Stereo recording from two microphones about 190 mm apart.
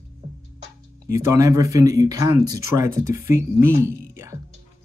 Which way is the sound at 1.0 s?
15° right (ahead or behind).